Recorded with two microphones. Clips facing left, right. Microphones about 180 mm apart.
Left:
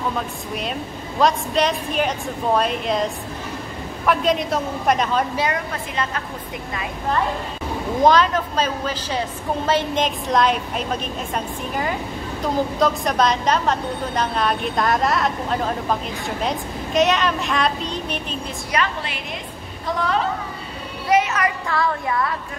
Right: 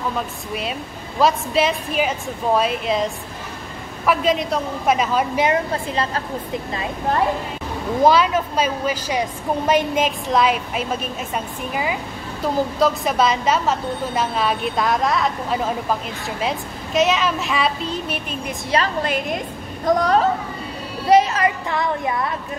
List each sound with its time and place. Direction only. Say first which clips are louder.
1.2 s a woman's voice: right 1 dB; 5° right (ahead or behind)
5.3 s speech: right 4 dB; 20° right (ahead or behind)
5.7 s speech: right 3 dB; 30° right (ahead or behind)
8.0 s a woman's voice: right 1 dB; 10° right (ahead or behind)
18.7 s speech: right 2 dB; 30° right (ahead or behind)
19.0 s a woman's voice: right 8 dB; 45° right (ahead or behind)
21.1 s speech: right 4 dB; 30° right (ahead or behind)